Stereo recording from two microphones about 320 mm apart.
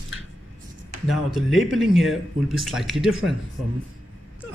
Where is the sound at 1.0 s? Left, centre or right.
Centre.